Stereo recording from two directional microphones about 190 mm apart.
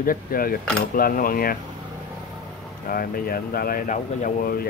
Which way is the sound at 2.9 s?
50° left (ahead or behind).